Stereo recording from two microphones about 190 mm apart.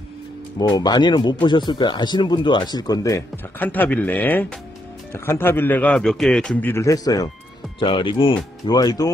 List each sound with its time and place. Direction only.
0.7 s a man's voice: 20° left (ahead or behind)